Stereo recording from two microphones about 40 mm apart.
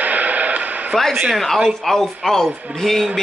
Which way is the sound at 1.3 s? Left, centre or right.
Centre.